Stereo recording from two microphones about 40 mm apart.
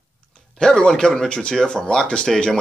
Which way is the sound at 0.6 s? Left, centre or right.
Centre.